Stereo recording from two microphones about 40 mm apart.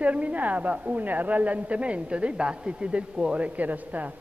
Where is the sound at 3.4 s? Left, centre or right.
Right.